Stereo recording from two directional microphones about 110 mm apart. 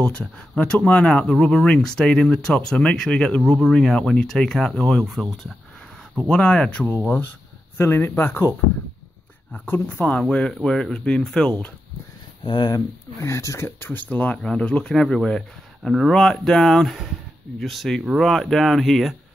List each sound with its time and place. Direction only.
0.0 s speech: 10° left (ahead or behind)
7.7 s speech: 20° left (ahead or behind)
12.4 s speech: 40° left (ahead or behind)
13.2 s speech: 30° left (ahead or behind); by 19.1 s centre (ahead or behind)